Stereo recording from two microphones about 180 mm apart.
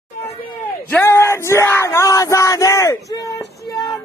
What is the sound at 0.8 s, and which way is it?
Yell, 10° left (ahead or behind).